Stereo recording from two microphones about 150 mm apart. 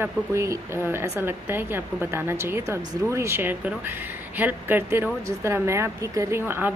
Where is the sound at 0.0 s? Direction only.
20° right (ahead or behind).